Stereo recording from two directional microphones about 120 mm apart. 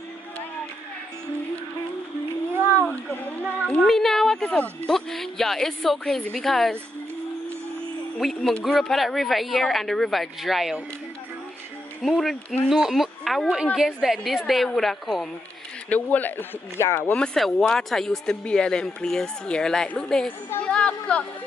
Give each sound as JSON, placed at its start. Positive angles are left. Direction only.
{"t": 3.6, "sound": "a woman's voice", "side_deg": 5}
{"t": 8.2, "sound": "a woman's voice", "side_deg": 0}
{"t": 12.0, "sound": "a woman's voice", "side_deg": 0}
{"t": 15.9, "sound": "speech", "side_deg": 15}
{"t": 17.2, "sound": "a woman's voice", "side_deg": 5}
{"t": 20.6, "sound": "a sound", "side_deg": 10}